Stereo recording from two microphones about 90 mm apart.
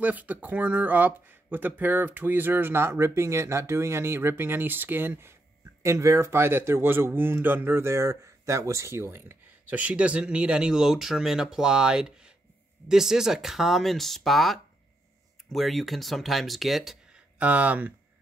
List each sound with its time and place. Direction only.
0.0 s speech: 15° right (ahead or behind)
9.7 s speech: 15° right (ahead or behind)
17.4 s speech: 15° right (ahead or behind)